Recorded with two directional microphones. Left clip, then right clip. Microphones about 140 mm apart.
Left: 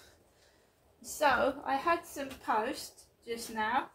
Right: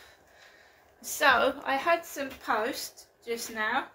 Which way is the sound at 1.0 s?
35° left (ahead or behind).